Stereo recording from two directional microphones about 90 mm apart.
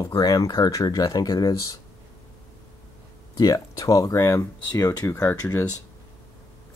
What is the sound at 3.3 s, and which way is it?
Speech, 45° left (ahead or behind).